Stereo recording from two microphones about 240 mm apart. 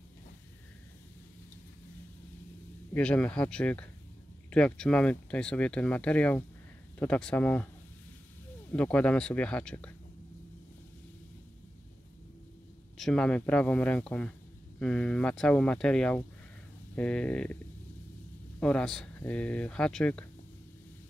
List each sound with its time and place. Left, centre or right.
2.9 s speech: centre
8.7 s speech: centre
12.9 s speech: centre
18.6 s speech: centre